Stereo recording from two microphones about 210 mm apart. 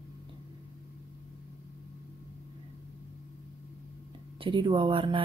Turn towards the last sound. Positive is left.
turn(degrees=-25)  # may be behind; listen again after turning